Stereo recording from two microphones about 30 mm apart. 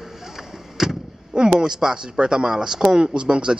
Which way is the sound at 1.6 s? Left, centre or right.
Right.